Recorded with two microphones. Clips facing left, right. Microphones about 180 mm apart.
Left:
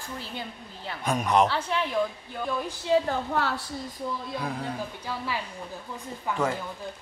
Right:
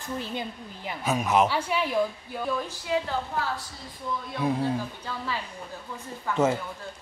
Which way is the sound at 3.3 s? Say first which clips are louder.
Left 6 dB; 65° left (ahead or behind).